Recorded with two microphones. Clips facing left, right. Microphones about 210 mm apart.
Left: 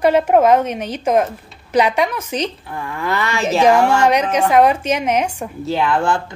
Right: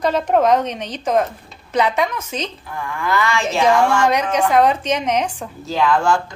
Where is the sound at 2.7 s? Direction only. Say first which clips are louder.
Right 1 dB; 35° left (ahead or behind).